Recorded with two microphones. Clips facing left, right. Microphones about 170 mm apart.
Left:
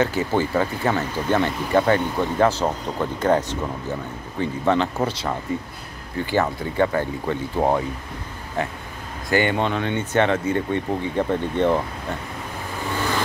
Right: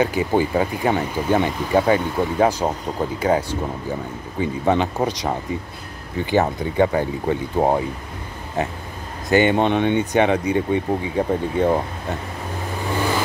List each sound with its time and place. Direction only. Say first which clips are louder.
0.0 s speech: right 2 dB; 15° right (ahead or behind)